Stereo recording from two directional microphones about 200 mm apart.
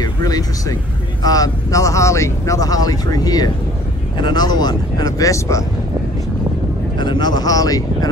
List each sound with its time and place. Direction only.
0.0 s speech: 20° left (ahead or behind)
7.0 s speech: 20° left (ahead or behind)